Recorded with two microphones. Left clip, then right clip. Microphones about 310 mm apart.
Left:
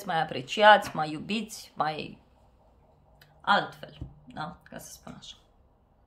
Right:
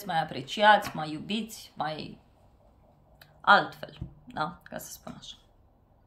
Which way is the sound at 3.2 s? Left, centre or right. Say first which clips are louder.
Right 4 dB; centre.